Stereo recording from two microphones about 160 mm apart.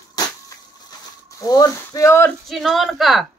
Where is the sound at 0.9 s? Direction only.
25° left (ahead or behind).